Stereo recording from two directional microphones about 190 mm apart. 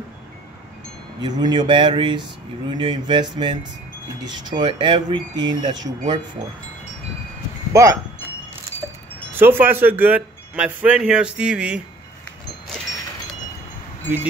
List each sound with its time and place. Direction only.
1.2 s speech: 25° right (ahead or behind)
7.7 s speech: 15° right (ahead or behind)
8.8 s wind chime: 10° right (ahead or behind)
9.3 s speech: 10° right (ahead or behind)